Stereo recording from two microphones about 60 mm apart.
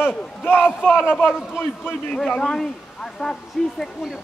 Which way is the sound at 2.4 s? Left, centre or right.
Centre.